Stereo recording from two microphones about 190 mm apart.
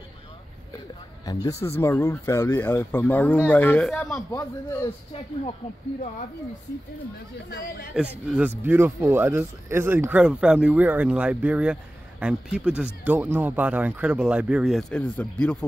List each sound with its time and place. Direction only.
1.2 s speech: 20° left (ahead or behind)
7.4 s speech: 55° left (ahead or behind)
8.4 s speech: 10° right (ahead or behind); by 15.5 s 5° left (ahead or behind)